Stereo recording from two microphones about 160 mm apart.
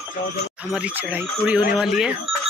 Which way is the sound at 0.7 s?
5° right (ahead or behind).